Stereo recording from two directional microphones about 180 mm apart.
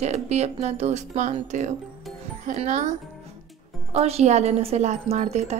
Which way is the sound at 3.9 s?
35° right (ahead or behind).